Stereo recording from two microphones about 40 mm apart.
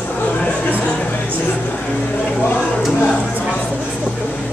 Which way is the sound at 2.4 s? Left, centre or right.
Left.